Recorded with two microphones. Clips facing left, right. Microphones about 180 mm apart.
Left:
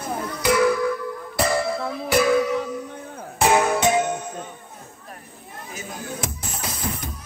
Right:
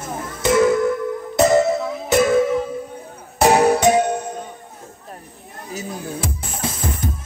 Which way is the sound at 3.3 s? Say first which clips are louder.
Right 5 dB; 35° right (ahead or behind).